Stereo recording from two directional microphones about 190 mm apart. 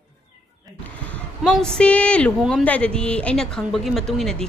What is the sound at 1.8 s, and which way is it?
Speech, 5° left (ahead or behind).